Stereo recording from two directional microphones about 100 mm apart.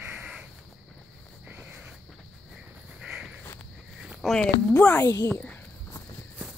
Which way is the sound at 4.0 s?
Centre (ahead or behind).